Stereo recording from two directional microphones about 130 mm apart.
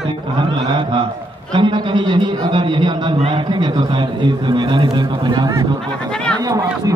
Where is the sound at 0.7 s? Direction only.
35° right (ahead or behind).